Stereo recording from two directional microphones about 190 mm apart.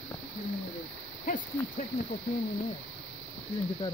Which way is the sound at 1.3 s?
45° left (ahead or behind).